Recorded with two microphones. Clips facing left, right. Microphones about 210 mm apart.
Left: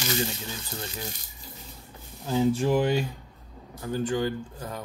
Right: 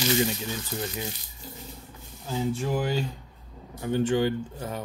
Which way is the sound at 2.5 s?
30° left (ahead or behind).